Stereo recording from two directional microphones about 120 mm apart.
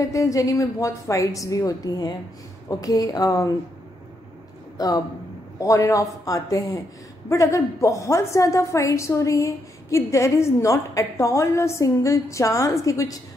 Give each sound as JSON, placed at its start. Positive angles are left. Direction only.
{"t": 0.0, "sound": "a woman's voice", "side_deg": 25}
{"t": 4.7, "sound": "a man's voice", "side_deg": 30}